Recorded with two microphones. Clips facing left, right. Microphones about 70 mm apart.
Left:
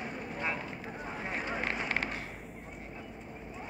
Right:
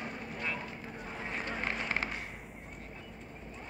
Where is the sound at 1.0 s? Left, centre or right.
Centre.